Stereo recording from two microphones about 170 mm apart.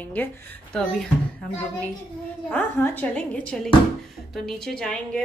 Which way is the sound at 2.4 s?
10° left (ahead or behind).